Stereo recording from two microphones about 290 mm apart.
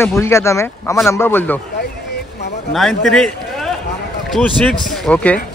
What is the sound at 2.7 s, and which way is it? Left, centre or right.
A man's voice, centre.